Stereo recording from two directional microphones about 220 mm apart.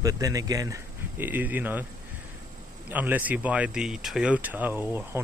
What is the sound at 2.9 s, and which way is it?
Speech, 10° right (ahead or behind).